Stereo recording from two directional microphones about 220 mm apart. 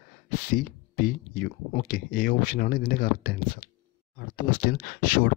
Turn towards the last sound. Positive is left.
turn(degrees=40)  # may be behind; listen again after turning